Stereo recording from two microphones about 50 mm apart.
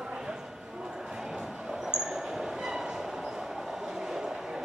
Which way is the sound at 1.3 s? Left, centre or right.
Centre.